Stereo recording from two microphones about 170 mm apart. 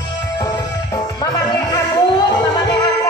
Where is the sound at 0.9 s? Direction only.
20° left (ahead or behind).